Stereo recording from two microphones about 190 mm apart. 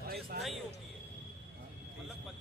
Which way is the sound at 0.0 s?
50° right (ahead or behind).